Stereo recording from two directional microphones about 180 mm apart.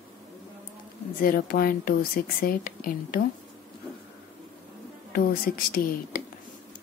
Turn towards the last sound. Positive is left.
turn(degrees=55)  # may be behind; listen again after turning